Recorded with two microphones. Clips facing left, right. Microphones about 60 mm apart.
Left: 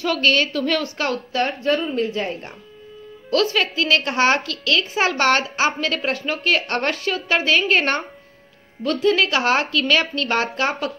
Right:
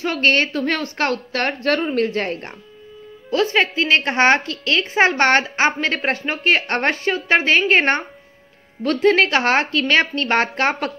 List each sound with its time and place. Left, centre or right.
0.0 s a woman's voice: right
3.3 s a woman's voice: right
8.8 s a woman's voice: right